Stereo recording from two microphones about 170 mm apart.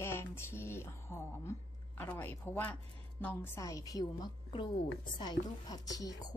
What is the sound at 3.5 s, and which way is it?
A woman's voice, 20° left (ahead or behind).